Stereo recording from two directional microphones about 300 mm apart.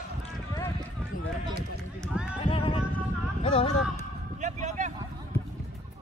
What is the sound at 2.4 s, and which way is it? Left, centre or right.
Horse, centre.